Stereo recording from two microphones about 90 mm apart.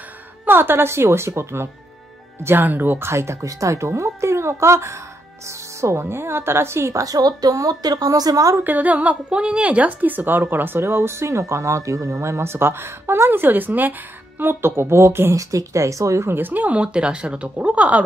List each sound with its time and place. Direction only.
0.5 s a woman's voice: 25° right (ahead or behind); by 8.5 s 45° right (ahead or behind)
8.5 s a woman's voice: 20° right (ahead or behind)